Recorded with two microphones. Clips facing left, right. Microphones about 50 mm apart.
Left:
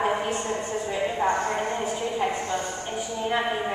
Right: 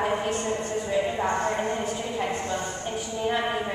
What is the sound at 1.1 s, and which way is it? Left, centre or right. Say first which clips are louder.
A woman's voice: left 1 dB; centre.